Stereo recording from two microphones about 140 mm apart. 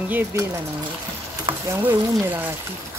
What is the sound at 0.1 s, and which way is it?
Speech, 15° right (ahead or behind).